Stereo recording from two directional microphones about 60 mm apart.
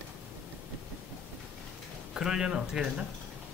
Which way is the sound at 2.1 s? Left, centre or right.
Centre.